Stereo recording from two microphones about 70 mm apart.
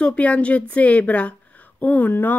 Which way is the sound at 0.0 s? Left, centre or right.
Centre.